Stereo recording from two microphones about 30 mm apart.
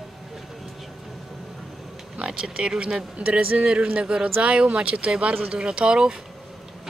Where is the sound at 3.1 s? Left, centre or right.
Right.